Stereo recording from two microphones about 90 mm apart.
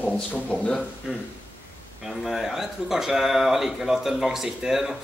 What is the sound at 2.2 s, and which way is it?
Speech, 5° right (ahead or behind).